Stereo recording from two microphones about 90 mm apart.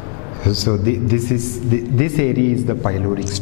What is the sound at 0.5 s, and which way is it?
Speech, 10° left (ahead or behind).